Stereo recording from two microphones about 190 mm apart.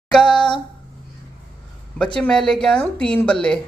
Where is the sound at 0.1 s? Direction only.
5° left (ahead or behind).